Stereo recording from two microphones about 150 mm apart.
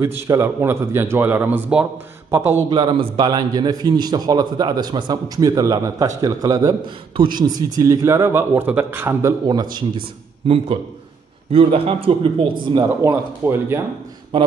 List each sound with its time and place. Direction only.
0.0 s speech: 15° right (ahead or behind)
2.7 s a man's voice: 35° right (ahead or behind); by 9.3 s 15° right (ahead or behind)
9.5 s a man's voice: 30° right (ahead or behind)
12.8 s speech: 15° right (ahead or behind)